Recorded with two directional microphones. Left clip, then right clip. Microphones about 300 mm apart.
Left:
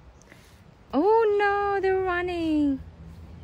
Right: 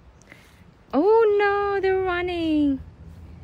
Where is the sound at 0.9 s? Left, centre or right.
Centre.